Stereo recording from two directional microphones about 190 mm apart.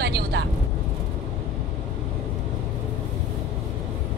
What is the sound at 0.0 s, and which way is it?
Vehicle, 60° right (ahead or behind).